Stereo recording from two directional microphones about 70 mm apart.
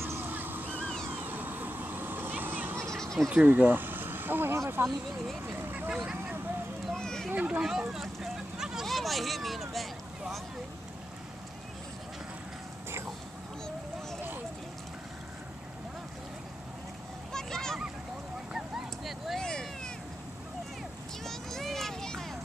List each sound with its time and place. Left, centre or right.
0.0 s vehicle: right
0.7 s a sound: centre
1.1 s vehicle: right
2.9 s goat: centre
3.3 s speech: right
5.6 s vehicle: right
6.9 s a sound: centre
7.3 s speech: centre
7.6 s vehicle: centre
8.8 s speech: centre
17.3 s a sound: centre
19.0 s vehicle: centre
19.4 s vehicle: centre
21.2 s a sound: centre